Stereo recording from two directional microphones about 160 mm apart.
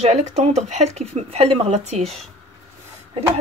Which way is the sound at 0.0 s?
45° right (ahead or behind).